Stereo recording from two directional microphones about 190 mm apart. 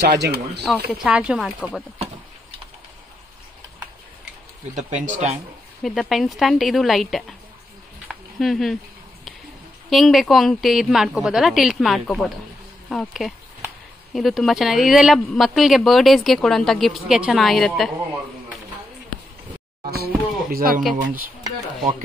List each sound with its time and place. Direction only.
0.0 s speech: 60° right (ahead or behind)
0.8 s speech: 5° right (ahead or behind)
4.7 s speech: 40° right (ahead or behind)
5.8 s speech: centre (ahead or behind)
8.1 s a sound: centre (ahead or behind)
9.8 s speech: centre (ahead or behind)
19.9 s speech: 55° right (ahead or behind)